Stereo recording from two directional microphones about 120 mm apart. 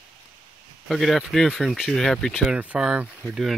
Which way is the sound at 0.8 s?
Centre (ahead or behind).